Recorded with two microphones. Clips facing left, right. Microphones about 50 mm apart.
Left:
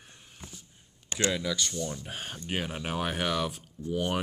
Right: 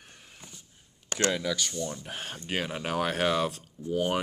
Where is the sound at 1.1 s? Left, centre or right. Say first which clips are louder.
Right 1 dB; right.